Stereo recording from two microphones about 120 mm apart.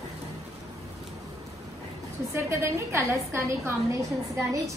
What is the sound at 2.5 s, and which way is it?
A woman's voice, 20° right (ahead or behind).